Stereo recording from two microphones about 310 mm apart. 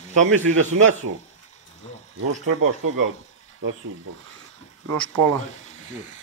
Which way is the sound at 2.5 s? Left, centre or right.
Right.